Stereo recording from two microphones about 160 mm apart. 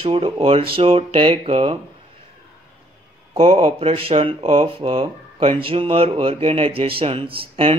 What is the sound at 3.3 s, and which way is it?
Speech, 35° right (ahead or behind).